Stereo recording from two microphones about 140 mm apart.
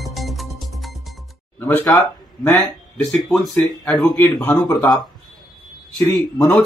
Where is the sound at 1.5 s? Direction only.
15° left (ahead or behind).